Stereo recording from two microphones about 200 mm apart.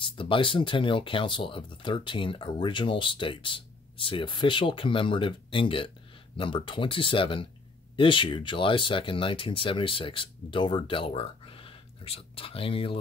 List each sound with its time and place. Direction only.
0.2 s speech: 25° left (ahead or behind)